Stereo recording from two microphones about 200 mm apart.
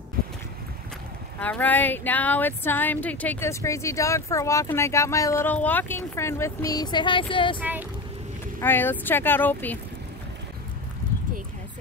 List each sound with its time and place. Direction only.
1.4 s speech: 10° left (ahead or behind); by 7.5 s 25° left (ahead or behind)
8.5 s speech: 10° left (ahead or behind)